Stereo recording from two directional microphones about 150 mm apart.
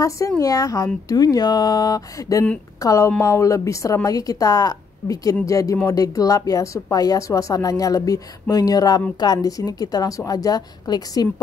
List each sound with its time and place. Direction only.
0.4 s speech: 25° left (ahead or behind)